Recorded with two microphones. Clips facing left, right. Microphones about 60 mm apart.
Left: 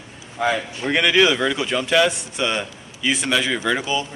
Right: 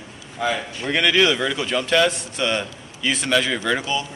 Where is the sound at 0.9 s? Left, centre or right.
Centre.